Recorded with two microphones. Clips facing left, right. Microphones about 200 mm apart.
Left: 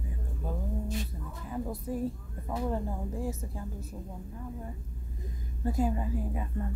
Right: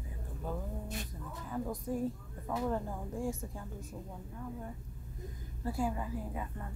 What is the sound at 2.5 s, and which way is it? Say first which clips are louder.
A woman's voice: left 2 dB; 15° left (ahead or behind).